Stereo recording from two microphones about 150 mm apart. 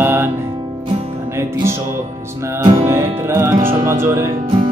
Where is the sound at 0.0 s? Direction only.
15° right (ahead or behind).